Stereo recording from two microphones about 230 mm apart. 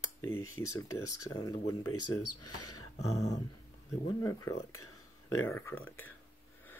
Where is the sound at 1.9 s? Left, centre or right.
Left.